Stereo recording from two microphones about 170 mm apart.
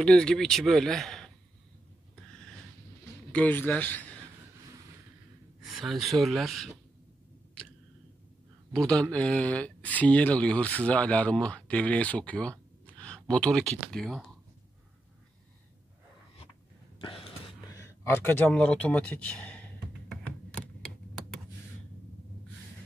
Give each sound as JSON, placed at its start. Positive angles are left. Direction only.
{"t": 0.0, "sound": "speech", "side_deg": 5}
{"t": 3.3, "sound": "speech", "side_deg": 10}
{"t": 5.6, "sound": "speech", "side_deg": 0}
{"t": 8.7, "sound": "speech", "side_deg": 5}
{"t": 17.6, "sound": "a sound", "side_deg": 15}